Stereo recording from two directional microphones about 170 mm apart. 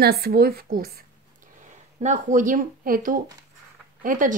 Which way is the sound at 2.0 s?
45° right (ahead or behind).